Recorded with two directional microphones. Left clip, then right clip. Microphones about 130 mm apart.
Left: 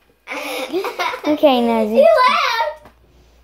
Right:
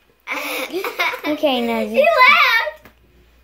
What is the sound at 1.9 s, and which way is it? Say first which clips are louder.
Speech: even; 15° right (ahead or behind).